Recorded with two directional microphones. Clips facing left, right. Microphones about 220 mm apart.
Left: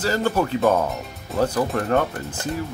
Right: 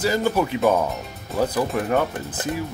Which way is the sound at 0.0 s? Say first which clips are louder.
Right 1 dB; 10° right (ahead or behind).